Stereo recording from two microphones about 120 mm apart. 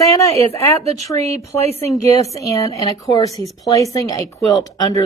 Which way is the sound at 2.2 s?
25° left (ahead or behind).